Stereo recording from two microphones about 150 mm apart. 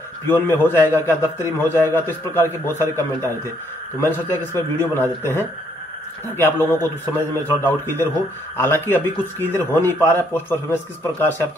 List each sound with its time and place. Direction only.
0.3 s a man's voice: 15° left (ahead or behind)